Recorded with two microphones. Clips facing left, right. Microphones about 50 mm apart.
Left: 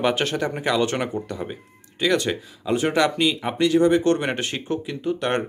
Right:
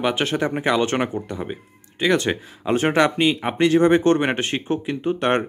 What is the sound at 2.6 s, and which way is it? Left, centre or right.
Speech, right.